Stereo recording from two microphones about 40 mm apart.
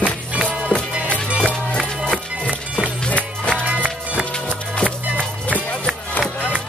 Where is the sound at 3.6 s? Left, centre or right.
Right.